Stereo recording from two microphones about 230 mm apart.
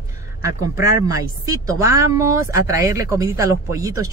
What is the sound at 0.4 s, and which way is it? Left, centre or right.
A woman's voice, centre.